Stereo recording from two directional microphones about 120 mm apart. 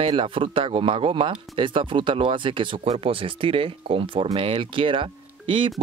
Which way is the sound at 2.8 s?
55° right (ahead or behind).